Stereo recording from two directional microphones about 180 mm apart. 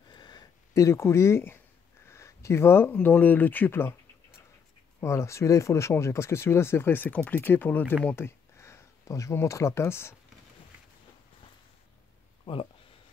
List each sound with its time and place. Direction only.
0.1 s a sound: 25° left (ahead or behind)
2.0 s speech: 15° left (ahead or behind)
5.0 s speech: 15° left (ahead or behind)